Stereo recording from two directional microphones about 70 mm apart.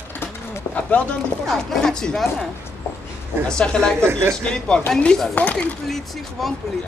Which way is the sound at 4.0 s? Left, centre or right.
Right.